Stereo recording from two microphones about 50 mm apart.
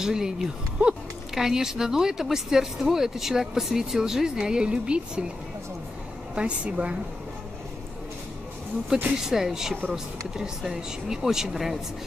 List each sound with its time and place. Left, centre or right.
0.0 s speech: centre
0.8 s speech: right
1.3 s speech: centre
6.3 s a woman's voice: right
8.8 s speech: centre